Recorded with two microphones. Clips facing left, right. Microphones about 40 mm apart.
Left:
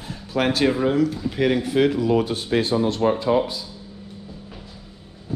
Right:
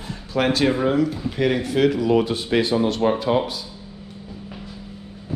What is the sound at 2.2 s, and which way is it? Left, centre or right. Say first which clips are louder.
Speech: right 1 dB; right.